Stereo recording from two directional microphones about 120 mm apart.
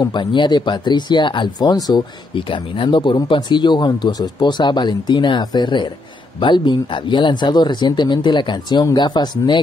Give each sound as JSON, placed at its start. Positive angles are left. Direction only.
{"t": 0.0, "sound": "speech", "side_deg": 40}